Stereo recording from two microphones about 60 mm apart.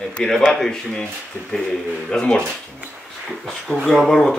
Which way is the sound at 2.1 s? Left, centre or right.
Centre.